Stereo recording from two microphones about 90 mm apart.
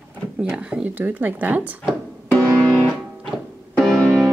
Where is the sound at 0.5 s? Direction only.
10° right (ahead or behind).